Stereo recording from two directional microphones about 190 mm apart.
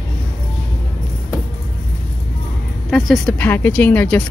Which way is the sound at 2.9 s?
Centre (ahead or behind).